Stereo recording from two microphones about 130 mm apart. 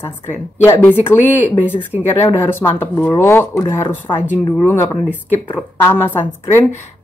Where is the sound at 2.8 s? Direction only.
15° left (ahead or behind).